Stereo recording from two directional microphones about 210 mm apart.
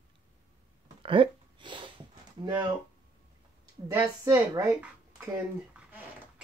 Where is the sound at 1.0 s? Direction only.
25° right (ahead or behind).